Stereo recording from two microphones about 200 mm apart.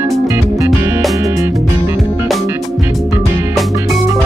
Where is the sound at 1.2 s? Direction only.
15° right (ahead or behind).